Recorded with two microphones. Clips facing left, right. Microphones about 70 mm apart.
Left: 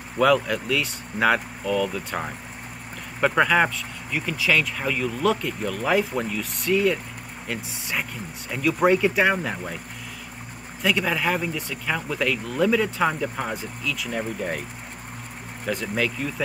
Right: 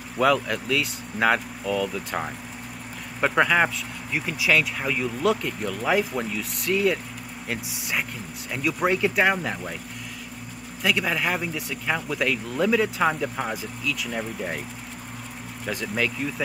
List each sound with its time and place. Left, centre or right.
0.2 s speech: centre
4.1 s speech: right
4.5 s speech: centre
8.5 s speech: centre
10.8 s speech: centre
15.6 s speech: centre